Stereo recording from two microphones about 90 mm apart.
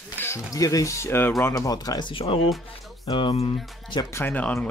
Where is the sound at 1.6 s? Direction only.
45° left (ahead or behind).